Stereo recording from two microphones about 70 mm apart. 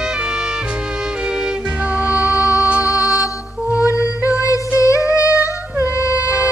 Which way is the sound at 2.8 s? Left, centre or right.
Left.